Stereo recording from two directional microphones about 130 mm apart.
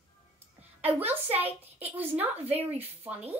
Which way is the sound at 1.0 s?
15° right (ahead or behind).